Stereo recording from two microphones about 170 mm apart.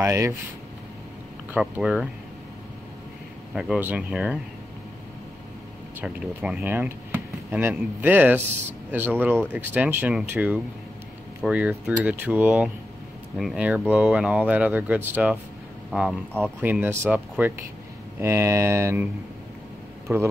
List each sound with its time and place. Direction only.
0.0 s speech: 15° right (ahead or behind)
1.5 s speech: 5° right (ahead or behind)
3.5 s speech: centre (ahead or behind)
5.9 s speech: 5° right (ahead or behind)
15.9 s speech: centre (ahead or behind)
16.6 s speech: 10° right (ahead or behind)
20.1 s speech: 10° right (ahead or behind)